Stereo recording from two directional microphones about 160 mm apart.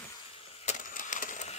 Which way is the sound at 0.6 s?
50° left (ahead or behind).